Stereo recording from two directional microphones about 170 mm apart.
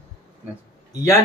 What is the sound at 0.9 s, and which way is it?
Speech, 20° left (ahead or behind).